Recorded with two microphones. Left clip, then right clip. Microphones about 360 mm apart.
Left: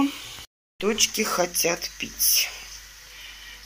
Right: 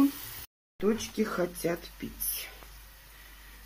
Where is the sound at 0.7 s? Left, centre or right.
Left.